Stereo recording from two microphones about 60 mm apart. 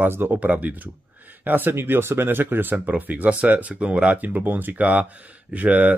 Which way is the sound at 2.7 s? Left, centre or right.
Right.